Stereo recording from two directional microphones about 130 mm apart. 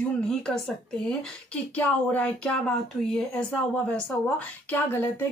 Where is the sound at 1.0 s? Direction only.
10° left (ahead or behind).